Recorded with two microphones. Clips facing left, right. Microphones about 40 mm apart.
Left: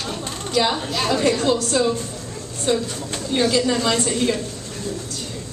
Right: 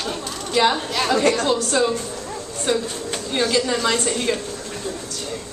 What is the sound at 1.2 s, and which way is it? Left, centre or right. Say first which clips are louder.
Speech: right 1 dB; right.